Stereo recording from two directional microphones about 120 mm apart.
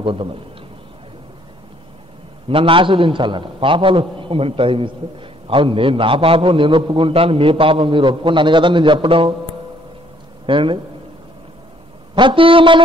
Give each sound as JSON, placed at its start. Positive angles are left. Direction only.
{"t": 0.0, "sound": "a man's voice", "side_deg": -50}
{"t": 2.4, "sound": "a man's voice", "side_deg": -50}
{"t": 10.4, "sound": "a man's voice", "side_deg": -45}
{"t": 12.2, "sound": "a man's voice", "side_deg": -45}